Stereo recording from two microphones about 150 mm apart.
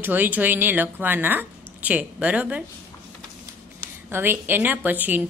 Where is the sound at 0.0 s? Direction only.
10° right (ahead or behind).